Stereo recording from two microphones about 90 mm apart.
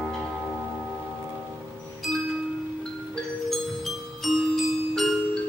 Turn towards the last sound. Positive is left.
turn(degrees=0)  # may be behind; listen again after turning